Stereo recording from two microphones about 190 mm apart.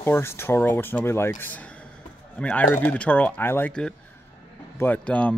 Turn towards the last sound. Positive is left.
turn(degrees=5)  # may be behind; listen again after turning